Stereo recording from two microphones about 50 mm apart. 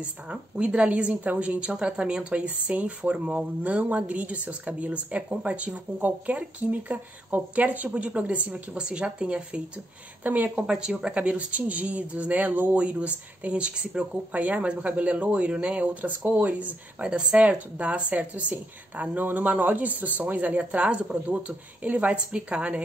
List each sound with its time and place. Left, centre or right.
0.0 s speech: right
3.0 s speech: centre
3.6 s speech: right
10.2 s speech: right
10.7 s speech: centre